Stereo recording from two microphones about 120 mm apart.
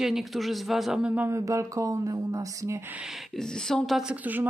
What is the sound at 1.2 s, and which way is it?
Speech, 25° right (ahead or behind).